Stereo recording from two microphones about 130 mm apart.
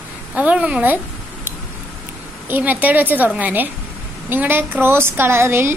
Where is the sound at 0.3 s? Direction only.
10° right (ahead or behind).